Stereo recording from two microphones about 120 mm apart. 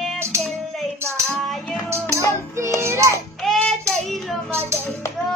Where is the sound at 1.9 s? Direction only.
20° right (ahead or behind).